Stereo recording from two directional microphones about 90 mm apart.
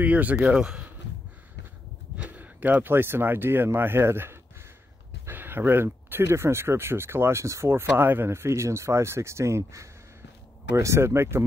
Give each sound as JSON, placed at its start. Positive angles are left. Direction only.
{"t": 0.0, "sound": "speech", "side_deg": -15}
{"t": 2.2, "sound": "speech", "side_deg": -20}